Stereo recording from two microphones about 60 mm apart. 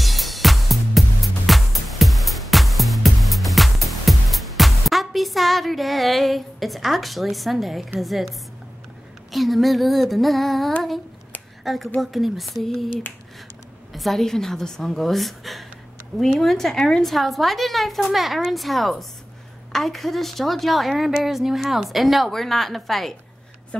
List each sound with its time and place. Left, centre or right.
0.0 s music: centre
8.0 s a woman's voice: centre
13.9 s a woman's voice: centre
23.7 s speech: centre